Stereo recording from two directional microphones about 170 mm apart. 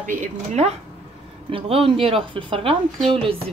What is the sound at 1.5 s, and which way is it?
Speech, 35° right (ahead or behind).